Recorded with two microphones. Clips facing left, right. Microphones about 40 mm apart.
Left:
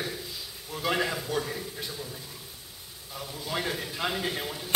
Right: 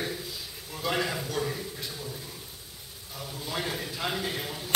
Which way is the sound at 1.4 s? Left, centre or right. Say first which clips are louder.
Right 1 dB; centre.